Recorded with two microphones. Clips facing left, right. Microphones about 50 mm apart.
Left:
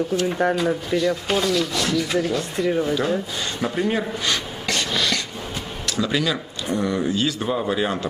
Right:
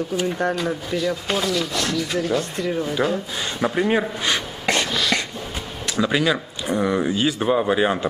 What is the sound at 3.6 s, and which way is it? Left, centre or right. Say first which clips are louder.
Speech: right 3 dB; centre.